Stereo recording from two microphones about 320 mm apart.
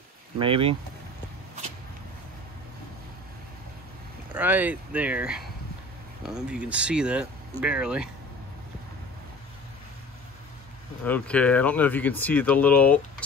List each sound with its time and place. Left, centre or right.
0.4 s speech: centre
4.3 s speech: centre
11.1 s speech: centre